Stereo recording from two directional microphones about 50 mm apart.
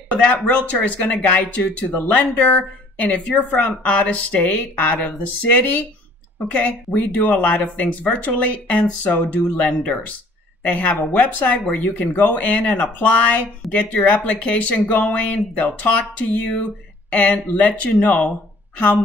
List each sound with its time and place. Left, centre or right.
0.2 s a woman's voice: left